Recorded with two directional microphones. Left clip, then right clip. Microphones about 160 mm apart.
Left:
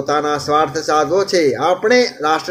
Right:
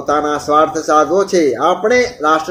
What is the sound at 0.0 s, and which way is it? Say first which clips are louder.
Speech: right 2 dB; 10° left (ahead or behind).